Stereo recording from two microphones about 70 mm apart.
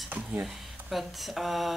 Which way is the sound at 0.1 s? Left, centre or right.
Right.